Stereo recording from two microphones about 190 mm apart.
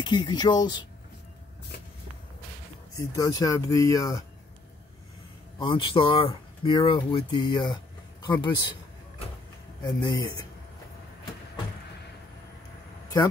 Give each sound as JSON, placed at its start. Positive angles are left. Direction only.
{"t": 0.0, "sound": "speech", "side_deg": 25}
{"t": 3.0, "sound": "speech", "side_deg": 20}
{"t": 5.6, "sound": "speech", "side_deg": 25}
{"t": 9.8, "sound": "speech", "side_deg": 25}